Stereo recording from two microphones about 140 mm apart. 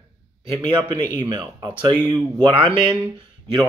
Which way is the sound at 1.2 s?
30° right (ahead or behind).